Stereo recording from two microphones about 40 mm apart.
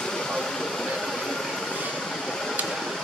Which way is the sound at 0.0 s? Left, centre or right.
Centre.